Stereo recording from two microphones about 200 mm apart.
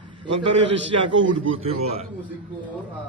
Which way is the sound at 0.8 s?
65° right (ahead or behind).